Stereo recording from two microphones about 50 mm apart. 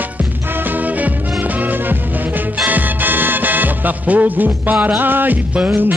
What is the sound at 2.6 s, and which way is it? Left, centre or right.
Music, right.